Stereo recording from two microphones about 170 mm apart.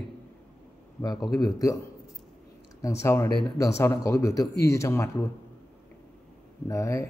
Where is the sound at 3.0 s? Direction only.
15° left (ahead or behind).